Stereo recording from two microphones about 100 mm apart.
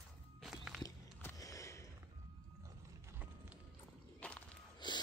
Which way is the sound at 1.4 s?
35° left (ahead or behind).